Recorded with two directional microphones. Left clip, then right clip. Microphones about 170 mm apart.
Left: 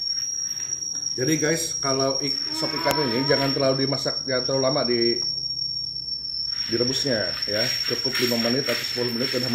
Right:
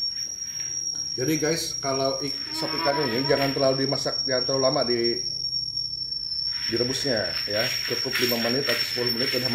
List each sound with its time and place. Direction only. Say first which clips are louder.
1.2 s speech: left 2 dB; 5° left (ahead or behind)
6.8 s speech: left 2 dB; 20° left (ahead or behind)